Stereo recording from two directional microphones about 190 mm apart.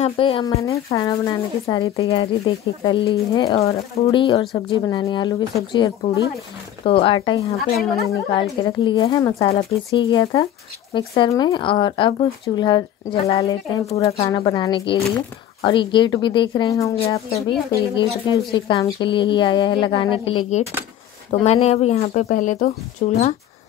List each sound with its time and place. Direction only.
0.0 s speech: 30° left (ahead or behind)
0.9 s speech: 15° left (ahead or behind)
1.8 s speech: 30° left (ahead or behind)
7.5 s speech: centre (ahead or behind)
8.1 s speech: 25° left (ahead or behind)
14.0 s speech: 30° left (ahead or behind)
18.5 s speech: 30° left (ahead or behind)